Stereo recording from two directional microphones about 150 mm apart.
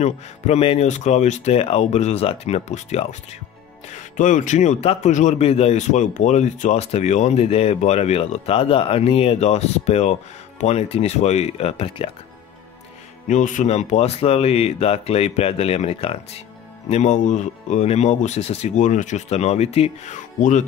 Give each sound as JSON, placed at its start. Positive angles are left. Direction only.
{"t": 0.0, "sound": "a man's voice", "side_deg": 45}
{"t": 13.3, "sound": "a man's voice", "side_deg": 55}